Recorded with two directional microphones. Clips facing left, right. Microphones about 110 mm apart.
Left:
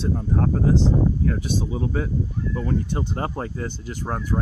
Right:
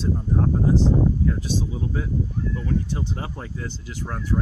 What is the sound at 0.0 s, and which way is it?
Speech, 85° left.